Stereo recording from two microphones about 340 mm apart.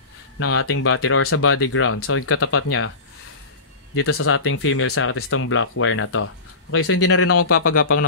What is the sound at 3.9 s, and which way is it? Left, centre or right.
Speech, left.